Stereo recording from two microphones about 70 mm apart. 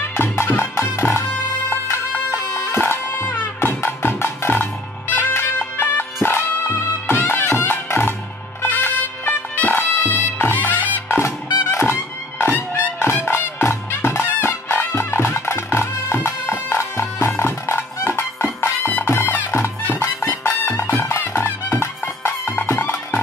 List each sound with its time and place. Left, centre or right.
0.2 s music: left
2.3 s music: left
11.1 s music: left